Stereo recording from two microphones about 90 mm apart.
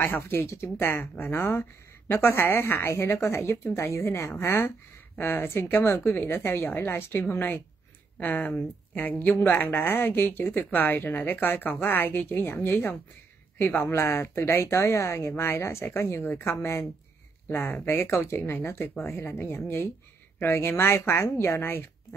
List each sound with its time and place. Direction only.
0.0 s speech: 25° left (ahead or behind)
17.5 s speech: 30° left (ahead or behind)